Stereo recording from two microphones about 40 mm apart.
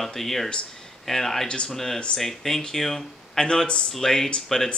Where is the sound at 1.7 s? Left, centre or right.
Centre.